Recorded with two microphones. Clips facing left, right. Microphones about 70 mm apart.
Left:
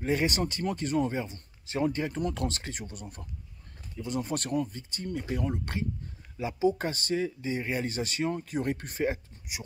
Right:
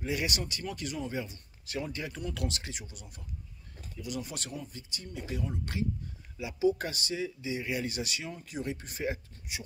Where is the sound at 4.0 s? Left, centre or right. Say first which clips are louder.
Left 6 dB; left.